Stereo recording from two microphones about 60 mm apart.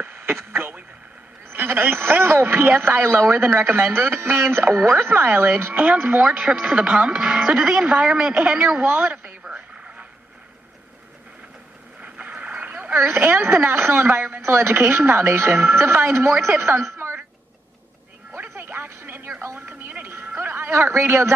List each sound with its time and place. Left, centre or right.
0.0 s radio: right
1.5 s a man's voice: right
5.7 s speech: right
8.8 s speech: right
9.4 s a sound: centre
12.0 s a sound: right
13.1 s a man's voice: right
13.7 s a woman's voice: right
18.5 s music: right
18.9 s music: right
20.2 s speech: right